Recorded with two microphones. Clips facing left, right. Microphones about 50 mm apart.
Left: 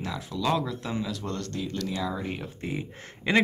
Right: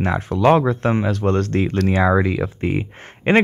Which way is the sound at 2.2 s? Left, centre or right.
Right.